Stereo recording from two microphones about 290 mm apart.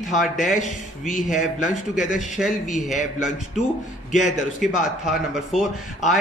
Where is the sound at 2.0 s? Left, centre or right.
Centre.